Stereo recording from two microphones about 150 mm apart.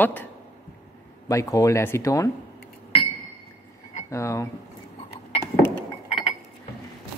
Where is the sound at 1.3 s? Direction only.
20° left (ahead or behind).